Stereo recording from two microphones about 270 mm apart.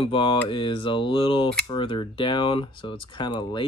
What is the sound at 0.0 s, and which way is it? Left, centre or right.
Speech, centre.